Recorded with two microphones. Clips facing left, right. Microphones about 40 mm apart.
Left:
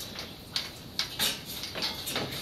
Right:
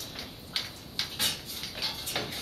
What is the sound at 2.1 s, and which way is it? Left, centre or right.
Music, left.